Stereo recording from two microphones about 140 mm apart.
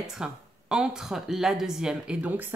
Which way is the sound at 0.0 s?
5° right (ahead or behind).